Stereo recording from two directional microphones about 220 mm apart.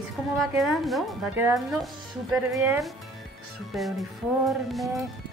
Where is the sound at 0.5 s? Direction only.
Centre (ahead or behind).